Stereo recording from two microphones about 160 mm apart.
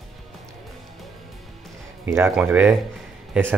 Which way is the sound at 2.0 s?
15° right (ahead or behind).